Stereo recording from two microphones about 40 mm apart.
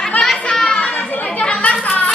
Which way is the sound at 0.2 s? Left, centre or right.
Centre.